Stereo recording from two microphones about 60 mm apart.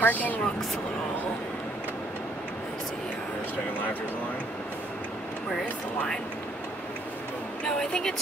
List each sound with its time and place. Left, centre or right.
0.0 s speech: left
7.6 s a woman's voice: centre